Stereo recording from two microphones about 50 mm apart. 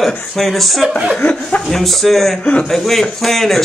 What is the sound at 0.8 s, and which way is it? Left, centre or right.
Speech, centre.